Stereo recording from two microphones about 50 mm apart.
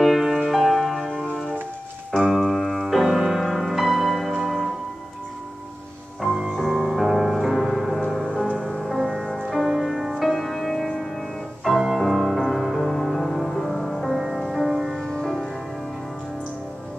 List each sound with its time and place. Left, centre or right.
0.0 s music: centre
2.1 s music: centre
6.5 s music: centre
8.8 s music: centre
9.5 s music: centre
15.0 s music: centre